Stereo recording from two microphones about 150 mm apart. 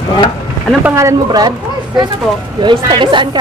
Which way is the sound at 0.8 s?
20° right (ahead or behind).